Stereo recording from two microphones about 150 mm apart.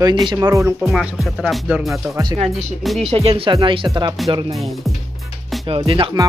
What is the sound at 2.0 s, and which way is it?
Speech, 20° right (ahead or behind).